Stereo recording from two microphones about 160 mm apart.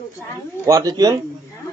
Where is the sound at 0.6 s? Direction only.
20° right (ahead or behind).